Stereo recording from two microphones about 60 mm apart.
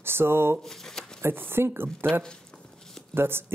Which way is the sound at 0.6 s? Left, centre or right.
Centre.